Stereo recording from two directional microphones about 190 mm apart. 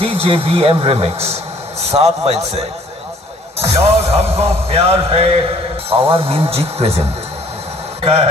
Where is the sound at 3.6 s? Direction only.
35° right (ahead or behind).